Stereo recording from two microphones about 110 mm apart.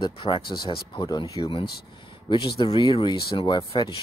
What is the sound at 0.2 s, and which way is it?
Speech, 50° left (ahead or behind).